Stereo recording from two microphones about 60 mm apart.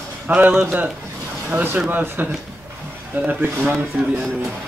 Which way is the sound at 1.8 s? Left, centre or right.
Right.